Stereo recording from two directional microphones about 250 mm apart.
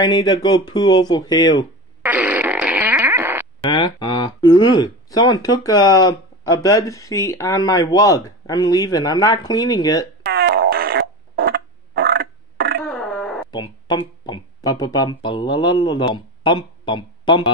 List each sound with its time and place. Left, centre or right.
0.0 s speech: centre
2.0 s fart: centre
3.6 s speech: centre
10.2 s fart: right
12.8 s a sound: centre
13.5 s speech: centre